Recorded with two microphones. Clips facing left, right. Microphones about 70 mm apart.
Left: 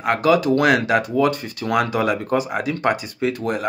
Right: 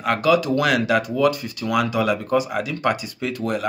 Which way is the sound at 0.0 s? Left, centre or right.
Left.